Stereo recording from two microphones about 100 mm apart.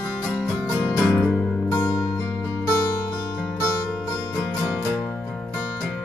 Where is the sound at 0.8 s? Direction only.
30° left (ahead or behind).